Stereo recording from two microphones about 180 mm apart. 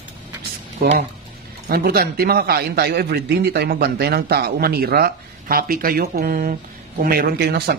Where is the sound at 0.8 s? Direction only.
55° right (ahead or behind).